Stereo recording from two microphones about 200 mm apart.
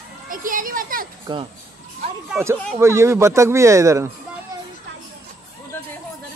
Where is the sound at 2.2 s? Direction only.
10° right (ahead or behind).